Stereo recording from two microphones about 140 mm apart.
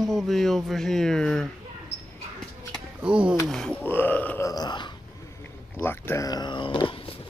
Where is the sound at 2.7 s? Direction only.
5° right (ahead or behind).